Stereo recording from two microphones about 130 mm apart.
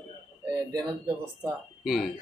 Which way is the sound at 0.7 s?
35° right (ahead or behind).